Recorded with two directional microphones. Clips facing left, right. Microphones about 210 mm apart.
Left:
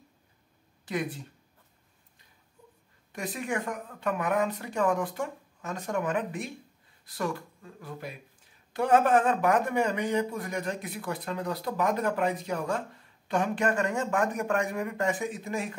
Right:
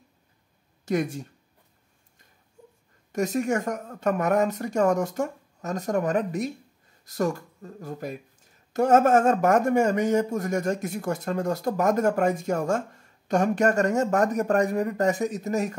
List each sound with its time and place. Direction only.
0.8 s speech: 45° right (ahead or behind)
3.1 s speech: 45° right (ahead or behind)